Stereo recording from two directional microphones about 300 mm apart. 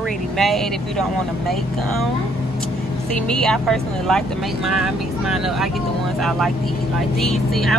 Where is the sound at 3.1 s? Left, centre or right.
Centre.